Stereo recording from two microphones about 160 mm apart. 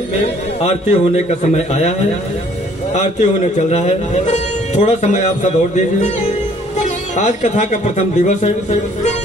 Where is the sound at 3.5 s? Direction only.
45° left (ahead or behind).